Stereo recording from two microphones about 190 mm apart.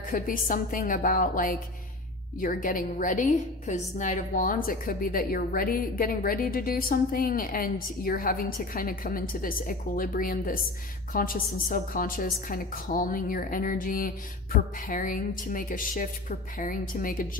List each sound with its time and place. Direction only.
0.1 s a woman's voice: 45° left (ahead or behind)